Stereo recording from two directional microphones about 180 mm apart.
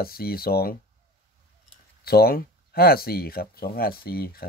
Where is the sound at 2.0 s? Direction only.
60° left (ahead or behind).